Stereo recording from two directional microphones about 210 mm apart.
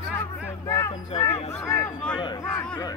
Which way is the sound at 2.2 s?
20° left (ahead or behind).